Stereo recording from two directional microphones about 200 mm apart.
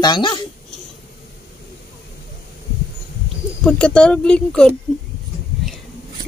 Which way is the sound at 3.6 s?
5° left (ahead or behind).